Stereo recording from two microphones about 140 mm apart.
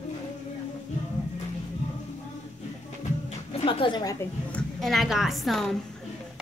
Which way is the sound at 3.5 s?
40° left (ahead or behind).